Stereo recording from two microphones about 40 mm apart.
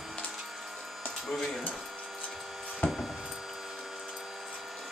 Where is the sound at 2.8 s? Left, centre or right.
Left.